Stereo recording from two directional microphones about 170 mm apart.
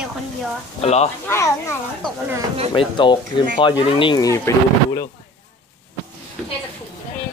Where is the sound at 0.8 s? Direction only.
40° left (ahead or behind).